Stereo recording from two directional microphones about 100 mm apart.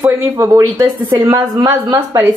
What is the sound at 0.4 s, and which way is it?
A woman's voice, 30° right (ahead or behind).